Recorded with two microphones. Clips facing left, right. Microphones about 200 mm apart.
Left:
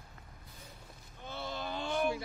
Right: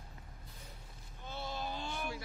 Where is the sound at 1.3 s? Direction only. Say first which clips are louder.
Left 2 dB; 60° left (ahead or behind).